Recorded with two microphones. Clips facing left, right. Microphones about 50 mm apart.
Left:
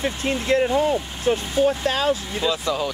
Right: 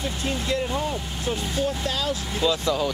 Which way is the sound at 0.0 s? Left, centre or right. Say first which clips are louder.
Left 4 dB; left.